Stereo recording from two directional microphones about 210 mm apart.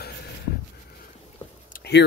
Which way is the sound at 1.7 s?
50° left (ahead or behind).